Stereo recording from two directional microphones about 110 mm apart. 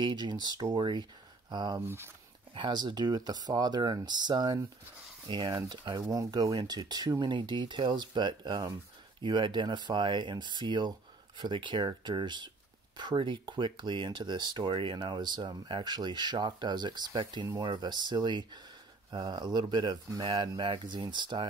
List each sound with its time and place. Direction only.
0.0 s speech: 40° right (ahead or behind)
1.8 s speech: 25° right (ahead or behind)
2.5 s speech: 45° right (ahead or behind)